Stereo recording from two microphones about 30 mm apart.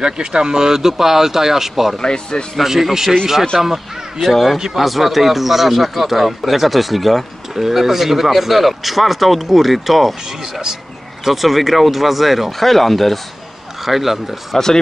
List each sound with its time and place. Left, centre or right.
0.0 s speech: right; by 2.0 s centre
2.0 s speech: left
2.6 s speech: centre
4.6 s speech: centre
4.8 s speech: centre
11.2 s speech: centre
13.8 s speech: centre